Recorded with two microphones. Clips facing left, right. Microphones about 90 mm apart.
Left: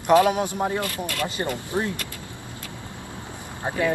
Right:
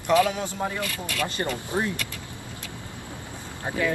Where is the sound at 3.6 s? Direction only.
25° left (ahead or behind).